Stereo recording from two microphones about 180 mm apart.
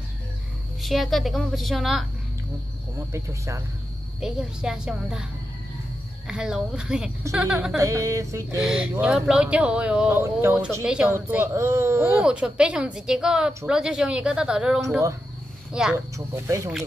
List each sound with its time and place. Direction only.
0.8 s a woman's voice: centre (ahead or behind)
3.1 s speech: 15° right (ahead or behind)
4.2 s a woman's voice: 5° right (ahead or behind)
6.2 s a woman's voice: 5° right (ahead or behind)
7.7 s speech: 15° right (ahead or behind)
8.6 s a woman's voice: 5° right (ahead or behind)
16.4 s speech: 15° right (ahead or behind)